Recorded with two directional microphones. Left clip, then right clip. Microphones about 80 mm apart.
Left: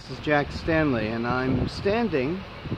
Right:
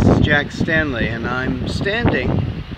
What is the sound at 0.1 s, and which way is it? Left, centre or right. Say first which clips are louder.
Speech: right 2 dB; centre.